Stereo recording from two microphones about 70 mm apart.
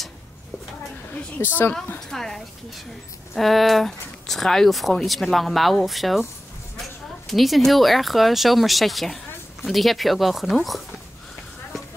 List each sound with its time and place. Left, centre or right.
1.4 s a woman's voice: left
2.0 s a woman's voice: centre
7.2 s speech: centre